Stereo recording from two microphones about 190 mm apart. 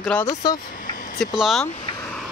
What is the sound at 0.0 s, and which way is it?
Speech, 10° left (ahead or behind).